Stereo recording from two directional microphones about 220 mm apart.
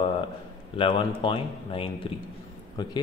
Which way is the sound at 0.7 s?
25° left (ahead or behind).